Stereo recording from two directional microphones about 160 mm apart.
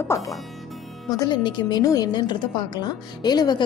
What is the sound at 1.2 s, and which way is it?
Speech, 25° left (ahead or behind).